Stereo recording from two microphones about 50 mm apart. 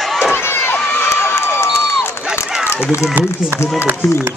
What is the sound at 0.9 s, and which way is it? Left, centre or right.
Crowd, left.